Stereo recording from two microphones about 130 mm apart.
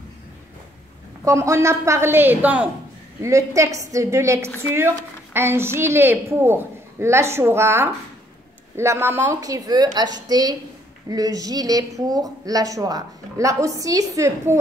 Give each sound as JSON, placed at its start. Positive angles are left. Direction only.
{"t": 1.2, "sound": "speech", "side_deg": -25}
{"t": 3.2, "sound": "a woman's voice", "side_deg": -25}